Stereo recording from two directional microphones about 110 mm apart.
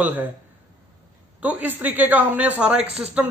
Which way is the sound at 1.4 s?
15° right (ahead or behind).